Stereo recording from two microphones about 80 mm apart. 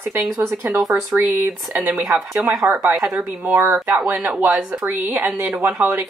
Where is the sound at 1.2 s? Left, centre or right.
Right.